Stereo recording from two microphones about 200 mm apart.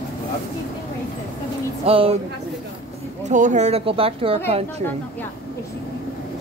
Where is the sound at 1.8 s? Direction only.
30° right (ahead or behind).